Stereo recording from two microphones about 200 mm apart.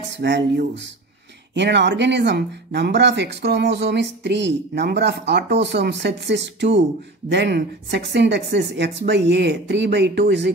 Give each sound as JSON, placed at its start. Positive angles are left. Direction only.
{"t": 0.2, "sound": "speech", "side_deg": -60}